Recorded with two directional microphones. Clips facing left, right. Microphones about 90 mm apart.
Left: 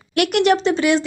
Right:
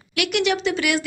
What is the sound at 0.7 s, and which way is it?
Speech, 25° left (ahead or behind).